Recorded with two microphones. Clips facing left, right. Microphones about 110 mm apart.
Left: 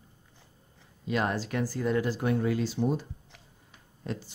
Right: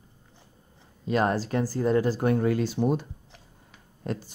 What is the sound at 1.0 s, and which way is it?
Speech, 40° right (ahead or behind).